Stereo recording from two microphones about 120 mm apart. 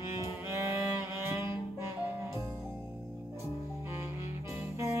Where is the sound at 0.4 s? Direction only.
20° right (ahead or behind).